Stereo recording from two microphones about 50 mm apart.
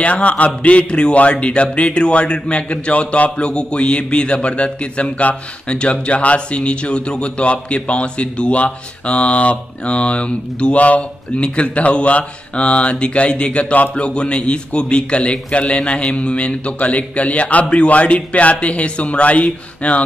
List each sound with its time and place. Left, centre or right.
0.0 s speech: left